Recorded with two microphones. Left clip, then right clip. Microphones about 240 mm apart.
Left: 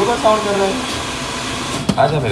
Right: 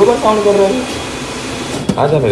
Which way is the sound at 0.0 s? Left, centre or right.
Left.